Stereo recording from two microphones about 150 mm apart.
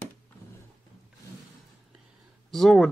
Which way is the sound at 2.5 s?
Centre (ahead or behind).